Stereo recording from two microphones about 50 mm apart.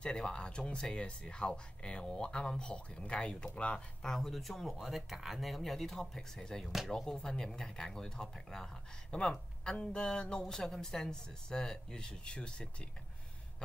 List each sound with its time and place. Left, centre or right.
0.0 s speech: centre
4.0 s speech: centre